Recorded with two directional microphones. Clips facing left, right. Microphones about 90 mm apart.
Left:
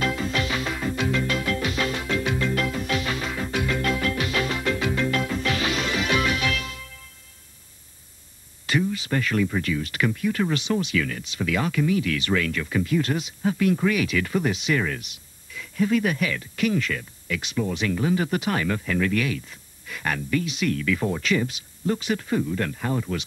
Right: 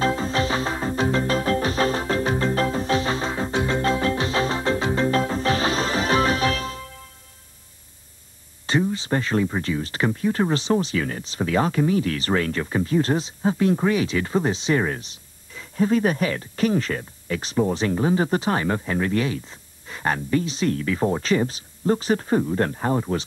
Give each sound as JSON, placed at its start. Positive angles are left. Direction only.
{"t": 0.0, "sound": "music", "side_deg": -30}
{"t": 8.6, "sound": "speech", "side_deg": -30}